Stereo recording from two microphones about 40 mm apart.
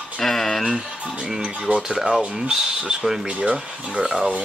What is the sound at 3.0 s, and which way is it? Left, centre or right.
Speech, centre.